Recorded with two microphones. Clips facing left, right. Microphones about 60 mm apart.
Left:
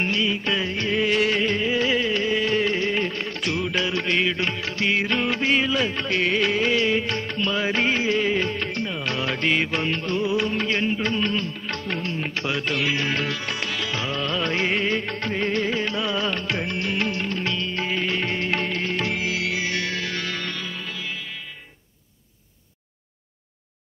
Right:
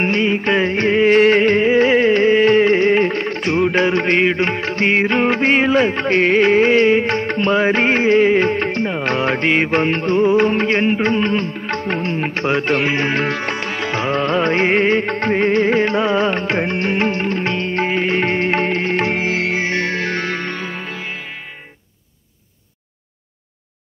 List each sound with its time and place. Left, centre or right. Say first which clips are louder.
0.0 s music: right 7 dB; right